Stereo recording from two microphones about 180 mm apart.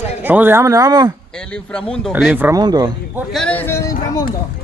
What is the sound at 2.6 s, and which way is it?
Speech, 25° right (ahead or behind).